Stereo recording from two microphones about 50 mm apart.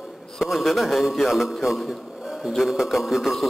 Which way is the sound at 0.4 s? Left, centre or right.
Centre.